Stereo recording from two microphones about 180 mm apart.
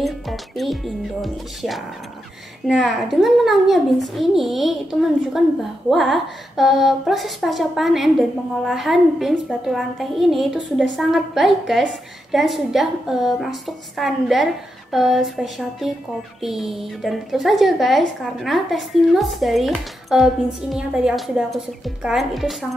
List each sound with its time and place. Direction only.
0.0 s a woman's voice: centre (ahead or behind)